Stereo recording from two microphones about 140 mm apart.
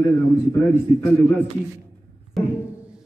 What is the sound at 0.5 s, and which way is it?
Speech, 20° left (ahead or behind).